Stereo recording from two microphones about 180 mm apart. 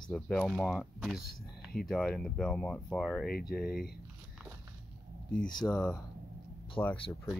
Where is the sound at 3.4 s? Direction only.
60° left (ahead or behind).